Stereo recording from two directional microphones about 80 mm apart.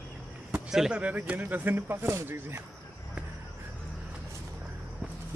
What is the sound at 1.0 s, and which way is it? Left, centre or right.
Speech, centre.